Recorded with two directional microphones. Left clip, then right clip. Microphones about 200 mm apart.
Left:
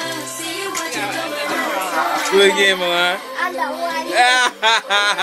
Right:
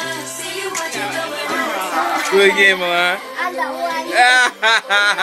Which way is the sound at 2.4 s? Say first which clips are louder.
Right 2 dB; centre (ahead or behind).